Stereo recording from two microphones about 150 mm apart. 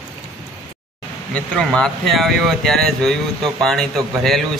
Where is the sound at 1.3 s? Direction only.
5° left (ahead or behind).